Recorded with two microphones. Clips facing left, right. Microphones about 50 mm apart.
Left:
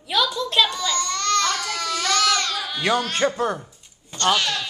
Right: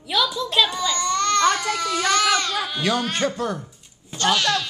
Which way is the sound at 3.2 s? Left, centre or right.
Centre.